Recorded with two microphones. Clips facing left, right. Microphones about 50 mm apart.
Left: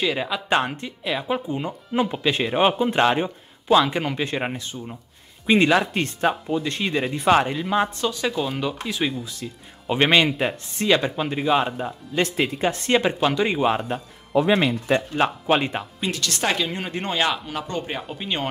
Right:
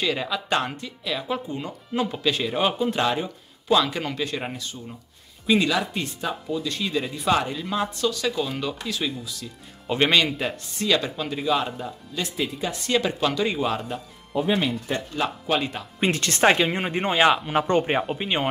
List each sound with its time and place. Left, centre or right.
0.0 s speech: centre
0.7 s speech: left
3.6 s speech: left
5.5 s speech: left
6.5 s speech: left
9.8 s speech: centre
12.2 s speech: left
14.3 s speech: left
15.1 s speech: left
16.0 s speech: right
17.6 s speech: right
18.0 s speech: centre